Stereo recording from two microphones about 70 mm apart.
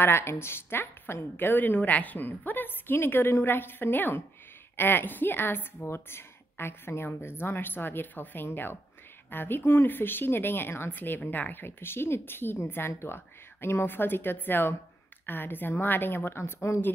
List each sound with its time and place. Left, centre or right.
0.0 s a woman's voice: left